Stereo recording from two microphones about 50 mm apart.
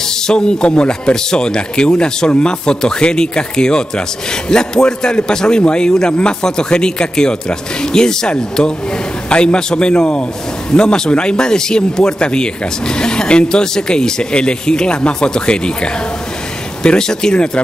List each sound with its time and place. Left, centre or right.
0.0 s speech: centre